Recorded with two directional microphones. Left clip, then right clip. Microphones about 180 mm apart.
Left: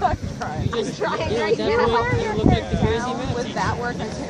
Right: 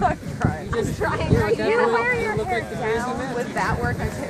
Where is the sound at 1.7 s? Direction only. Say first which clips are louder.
Right 1 dB; 40° right (ahead or behind).